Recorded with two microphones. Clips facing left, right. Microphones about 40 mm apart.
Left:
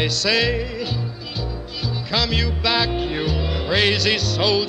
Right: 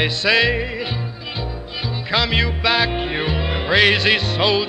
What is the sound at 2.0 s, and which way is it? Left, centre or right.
Music, right.